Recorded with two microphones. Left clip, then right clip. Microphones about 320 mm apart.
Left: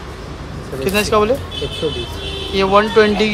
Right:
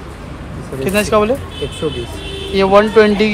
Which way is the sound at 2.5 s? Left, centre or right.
Centre.